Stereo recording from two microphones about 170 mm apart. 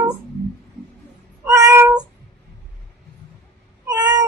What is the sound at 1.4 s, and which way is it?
Meow, 15° right (ahead or behind).